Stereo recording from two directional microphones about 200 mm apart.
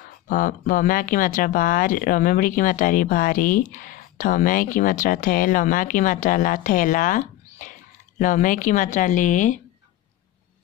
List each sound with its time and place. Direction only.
0.3 s speech: 40° left (ahead or behind)